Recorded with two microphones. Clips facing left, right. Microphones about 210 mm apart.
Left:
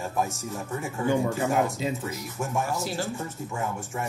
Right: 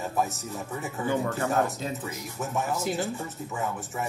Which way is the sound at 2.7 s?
20° right (ahead or behind).